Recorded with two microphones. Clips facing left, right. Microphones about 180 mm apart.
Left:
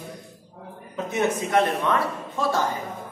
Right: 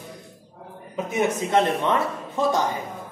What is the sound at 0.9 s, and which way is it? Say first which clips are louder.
Mantra: right 1 dB; 15° right (ahead or behind).